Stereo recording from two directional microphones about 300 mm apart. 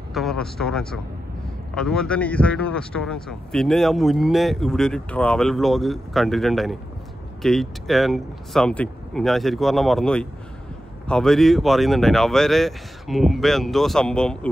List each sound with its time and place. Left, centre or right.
0.1 s speech: centre